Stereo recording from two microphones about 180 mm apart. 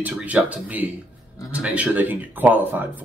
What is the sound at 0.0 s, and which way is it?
Speech, 10° right (ahead or behind).